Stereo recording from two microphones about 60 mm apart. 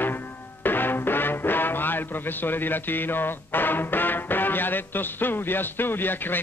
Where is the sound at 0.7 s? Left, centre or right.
Left.